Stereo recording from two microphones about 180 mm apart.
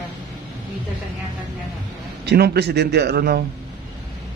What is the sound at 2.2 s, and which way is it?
A man's voice, 65° right (ahead or behind).